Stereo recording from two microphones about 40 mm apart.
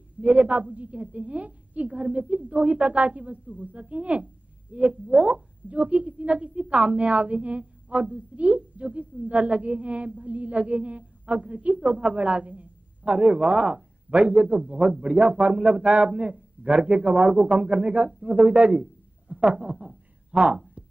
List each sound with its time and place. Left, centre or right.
0.2 s a man's voice: right
0.5 s a woman's voice: right
19.2 s a sound: right
19.5 s a man's voice: right